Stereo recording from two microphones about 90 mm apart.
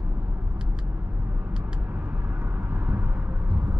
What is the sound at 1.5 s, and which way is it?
Vehicle, 15° right (ahead or behind).